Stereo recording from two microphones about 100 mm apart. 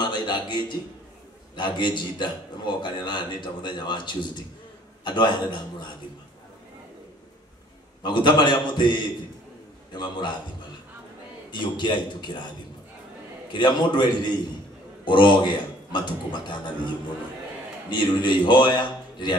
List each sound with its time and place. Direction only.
0.0 s a sound: 50° left (ahead or behind)
1.5 s a man's voice: 50° left (ahead or behind)
8.0 s a man's voice: 50° left (ahead or behind)
11.5 s a man's voice: 50° left (ahead or behind)
13.5 s a man's voice: 50° left (ahead or behind)